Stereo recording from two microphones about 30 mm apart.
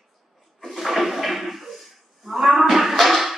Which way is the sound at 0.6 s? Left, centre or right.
Centre.